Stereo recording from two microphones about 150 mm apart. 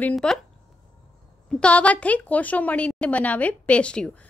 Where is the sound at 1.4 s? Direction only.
5° left (ahead or behind).